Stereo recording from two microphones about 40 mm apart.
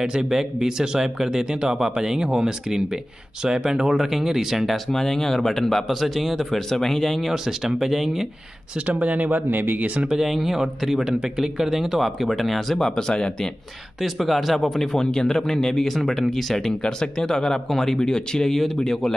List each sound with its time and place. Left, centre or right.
0.3 s speech: centre
4.9 s speech: centre
5.9 s speech: centre
9.1 s speech: right
10.0 s speech: centre
12.7 s speech: centre
14.0 s speech: centre
15.0 s speech: centre